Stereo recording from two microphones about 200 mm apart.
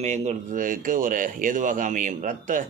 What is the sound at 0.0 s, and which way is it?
Speech, 35° right (ahead or behind).